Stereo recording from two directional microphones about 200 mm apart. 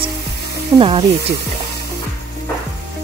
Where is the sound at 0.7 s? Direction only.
25° right (ahead or behind).